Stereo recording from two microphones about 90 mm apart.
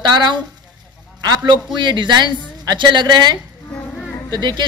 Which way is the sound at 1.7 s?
60° right (ahead or behind).